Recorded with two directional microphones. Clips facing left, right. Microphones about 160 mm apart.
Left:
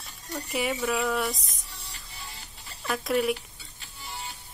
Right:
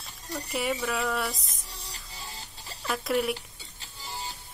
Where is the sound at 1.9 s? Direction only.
30° right (ahead or behind).